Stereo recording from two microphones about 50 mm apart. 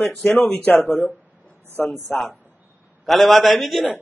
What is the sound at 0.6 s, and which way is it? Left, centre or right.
Speech, left.